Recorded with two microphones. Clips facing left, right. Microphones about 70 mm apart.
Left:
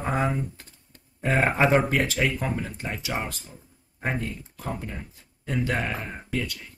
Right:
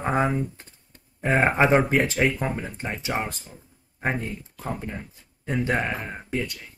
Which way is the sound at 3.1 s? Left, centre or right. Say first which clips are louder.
Right 3 dB; centre.